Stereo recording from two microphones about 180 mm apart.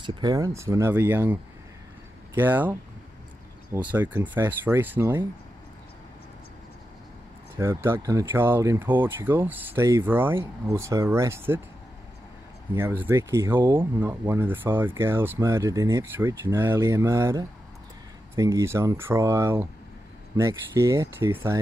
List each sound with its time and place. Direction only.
0.0 s speech: 25° right (ahead or behind)
7.5 s speech: 15° right (ahead or behind)
12.7 s speech: 10° right (ahead or behind)